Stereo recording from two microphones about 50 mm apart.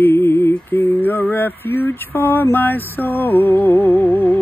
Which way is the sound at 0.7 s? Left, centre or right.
Left.